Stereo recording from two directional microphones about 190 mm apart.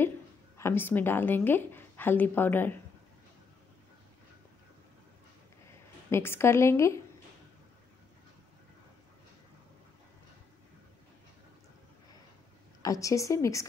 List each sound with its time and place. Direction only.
0.6 s a woman's voice: 10° left (ahead or behind)
6.0 s a woman's voice: 15° left (ahead or behind)
12.8 s a woman's voice: 15° left (ahead or behind)